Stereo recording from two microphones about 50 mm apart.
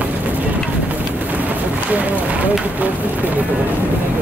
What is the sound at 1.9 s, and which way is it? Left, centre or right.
Run, right.